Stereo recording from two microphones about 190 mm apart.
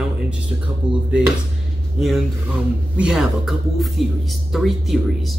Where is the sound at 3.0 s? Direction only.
5° right (ahead or behind).